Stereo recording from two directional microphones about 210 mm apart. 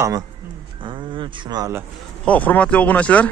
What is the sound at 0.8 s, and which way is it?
Speech, 20° right (ahead or behind).